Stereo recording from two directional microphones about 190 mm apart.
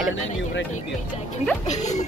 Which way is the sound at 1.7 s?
40° left (ahead or behind).